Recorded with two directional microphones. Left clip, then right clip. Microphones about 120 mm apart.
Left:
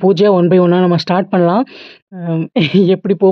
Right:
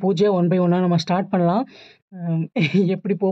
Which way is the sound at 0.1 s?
35° left (ahead or behind).